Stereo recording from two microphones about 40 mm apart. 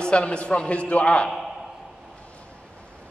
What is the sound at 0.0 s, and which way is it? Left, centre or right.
A man's voice, left.